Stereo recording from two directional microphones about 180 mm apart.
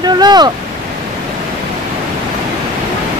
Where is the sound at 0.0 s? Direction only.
25° right (ahead or behind).